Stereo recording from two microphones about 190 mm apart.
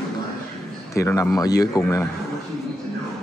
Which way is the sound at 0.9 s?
15° left (ahead or behind).